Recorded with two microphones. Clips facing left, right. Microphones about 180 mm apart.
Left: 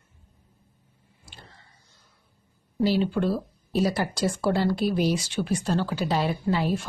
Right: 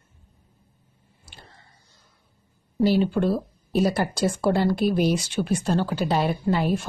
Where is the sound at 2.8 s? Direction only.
45° right (ahead or behind).